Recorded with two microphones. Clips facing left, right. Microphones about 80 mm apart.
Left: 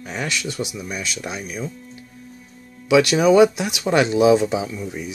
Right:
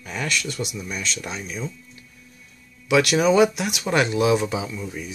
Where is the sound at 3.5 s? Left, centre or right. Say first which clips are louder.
Left 3 dB; left.